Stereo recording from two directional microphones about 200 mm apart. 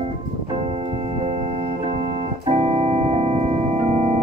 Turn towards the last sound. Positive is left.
turn(degrees=-30)  # may be behind; listen again after turning